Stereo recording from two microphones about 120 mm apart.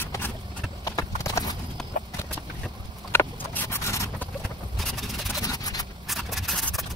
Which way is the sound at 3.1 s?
20° left (ahead or behind).